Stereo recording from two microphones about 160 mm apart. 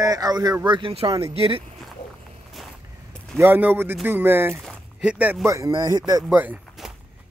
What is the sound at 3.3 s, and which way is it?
Speech, 15° right (ahead or behind).